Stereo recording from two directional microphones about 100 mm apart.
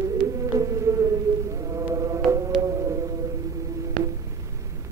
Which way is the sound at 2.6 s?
30° right (ahead or behind).